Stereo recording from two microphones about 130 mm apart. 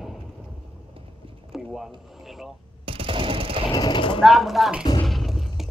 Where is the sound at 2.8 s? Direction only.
45° right (ahead or behind).